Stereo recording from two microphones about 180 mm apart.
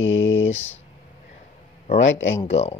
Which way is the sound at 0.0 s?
90° left.